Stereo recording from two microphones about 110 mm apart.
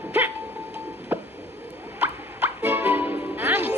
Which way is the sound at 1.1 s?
20° right (ahead or behind).